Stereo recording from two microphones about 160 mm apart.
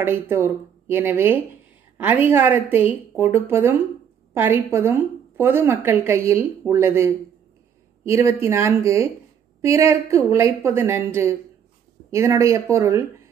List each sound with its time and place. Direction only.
0.0 s a woman's voice: 15° right (ahead or behind)